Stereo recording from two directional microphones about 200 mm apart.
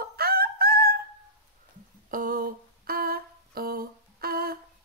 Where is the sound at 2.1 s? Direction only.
45° right (ahead or behind).